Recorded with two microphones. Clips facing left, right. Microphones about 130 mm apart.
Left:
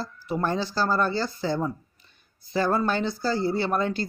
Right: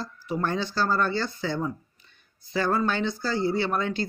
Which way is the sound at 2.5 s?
40° left (ahead or behind).